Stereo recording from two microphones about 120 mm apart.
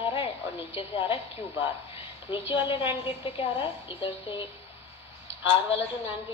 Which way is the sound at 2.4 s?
20° right (ahead or behind).